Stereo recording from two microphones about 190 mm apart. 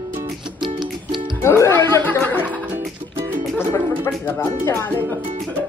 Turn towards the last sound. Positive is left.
turn(degrees=10)  # may be behind; listen again after turning